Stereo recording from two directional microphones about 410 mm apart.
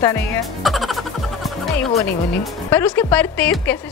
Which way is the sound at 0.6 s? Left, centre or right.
Centre.